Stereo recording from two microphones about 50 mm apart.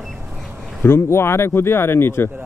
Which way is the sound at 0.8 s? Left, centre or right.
Left.